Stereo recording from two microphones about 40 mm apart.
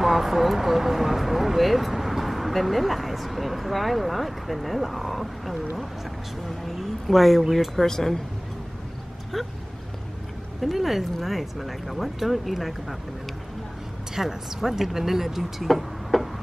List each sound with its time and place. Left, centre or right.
0.0 s speech: centre
10.6 s speech: centre
14.1 s speech: centre